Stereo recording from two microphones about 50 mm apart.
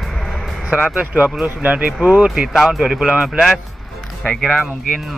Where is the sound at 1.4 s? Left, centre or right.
Right.